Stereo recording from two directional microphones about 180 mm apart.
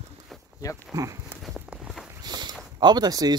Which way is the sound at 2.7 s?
25° right (ahead or behind).